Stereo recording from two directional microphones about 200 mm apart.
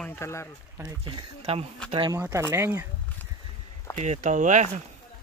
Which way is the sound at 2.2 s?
10° right (ahead or behind).